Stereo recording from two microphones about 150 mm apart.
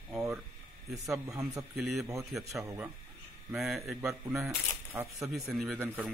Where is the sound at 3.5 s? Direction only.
Centre (ahead or behind).